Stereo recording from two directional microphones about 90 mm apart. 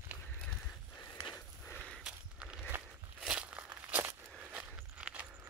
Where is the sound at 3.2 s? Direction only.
15° right (ahead or behind).